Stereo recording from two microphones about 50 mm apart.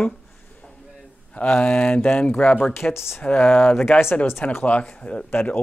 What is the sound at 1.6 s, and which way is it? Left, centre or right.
Speech, left.